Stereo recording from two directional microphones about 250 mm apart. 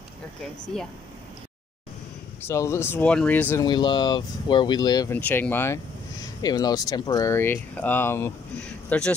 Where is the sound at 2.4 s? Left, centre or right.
Centre.